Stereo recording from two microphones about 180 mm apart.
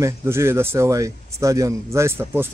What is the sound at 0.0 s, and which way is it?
Speech, 15° right (ahead or behind).